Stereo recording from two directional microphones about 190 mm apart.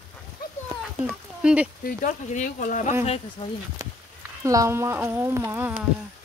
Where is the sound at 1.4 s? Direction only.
5° right (ahead or behind).